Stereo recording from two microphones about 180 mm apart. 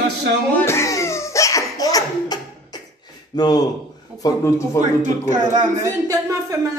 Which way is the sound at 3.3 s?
20° left (ahead or behind).